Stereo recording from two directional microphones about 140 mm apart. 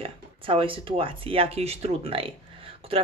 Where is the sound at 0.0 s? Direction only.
40° right (ahead or behind).